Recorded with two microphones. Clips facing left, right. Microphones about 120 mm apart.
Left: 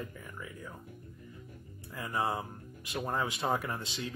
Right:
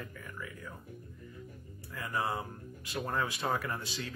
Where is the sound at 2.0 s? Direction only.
25° left (ahead or behind).